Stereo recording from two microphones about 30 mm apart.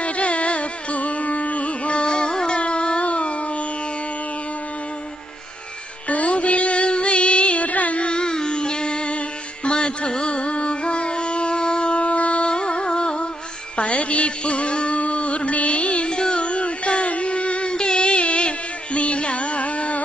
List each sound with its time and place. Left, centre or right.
0.0 s carnatic music: left
2.6 s a sound: left
6.0 s music: left
8.1 s music: left
9.7 s carnatic music: left
12.5 s music: left
13.7 s music: left
16.1 s music: left
17.7 s music: left
18.9 s carnatic music: left